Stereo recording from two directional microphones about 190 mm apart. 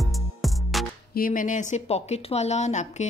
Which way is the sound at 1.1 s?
45° left (ahead or behind).